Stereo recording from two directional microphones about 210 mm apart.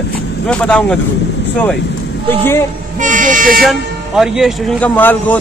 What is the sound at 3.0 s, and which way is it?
Speech, 40° right (ahead or behind).